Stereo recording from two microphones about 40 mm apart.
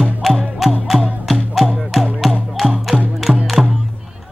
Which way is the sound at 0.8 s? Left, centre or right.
Centre.